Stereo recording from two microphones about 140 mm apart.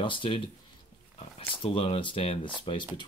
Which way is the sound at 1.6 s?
40° left (ahead or behind).